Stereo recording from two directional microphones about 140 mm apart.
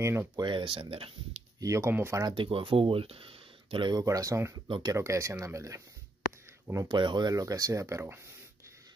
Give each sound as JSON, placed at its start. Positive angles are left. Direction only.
{"t": 0.0, "sound": "speech", "side_deg": -15}
{"t": 0.4, "sound": "speech", "side_deg": -35}
{"t": 1.6, "sound": "speech", "side_deg": -20}
{"t": 2.3, "sound": "speech", "side_deg": -40}
{"t": 4.0, "sound": "speech", "side_deg": -25}
{"t": 4.6, "sound": "speech", "side_deg": -35}
{"t": 4.9, "sound": "speech", "side_deg": -20}